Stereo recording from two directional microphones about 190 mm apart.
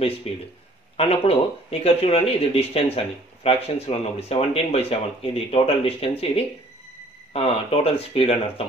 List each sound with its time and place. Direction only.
0.3 s speech: 30° left (ahead or behind)